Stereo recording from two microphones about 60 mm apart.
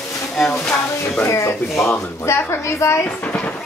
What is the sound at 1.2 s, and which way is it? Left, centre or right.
Speech, left.